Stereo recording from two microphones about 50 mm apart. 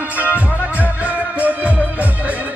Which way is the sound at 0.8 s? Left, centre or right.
Right.